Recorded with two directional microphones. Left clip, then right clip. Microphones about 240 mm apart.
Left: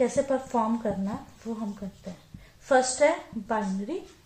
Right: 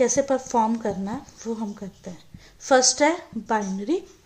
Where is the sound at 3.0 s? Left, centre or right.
Right.